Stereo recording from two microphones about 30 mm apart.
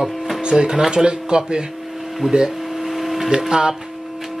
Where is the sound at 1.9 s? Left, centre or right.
Centre.